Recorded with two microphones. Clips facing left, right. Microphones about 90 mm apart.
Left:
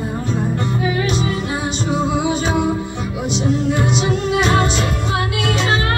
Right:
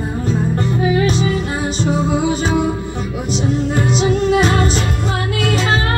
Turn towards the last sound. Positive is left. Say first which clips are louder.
# right 3 dB
turn(degrees=-40)  # may be behind; listen again after turning